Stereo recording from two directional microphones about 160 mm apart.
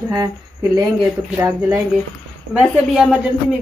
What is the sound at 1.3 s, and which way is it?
Speech, 15° right (ahead or behind).